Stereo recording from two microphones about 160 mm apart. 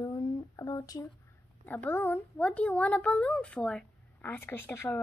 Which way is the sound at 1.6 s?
10° left (ahead or behind).